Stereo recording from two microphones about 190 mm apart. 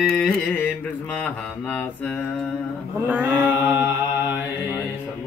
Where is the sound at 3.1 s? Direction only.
10° right (ahead or behind).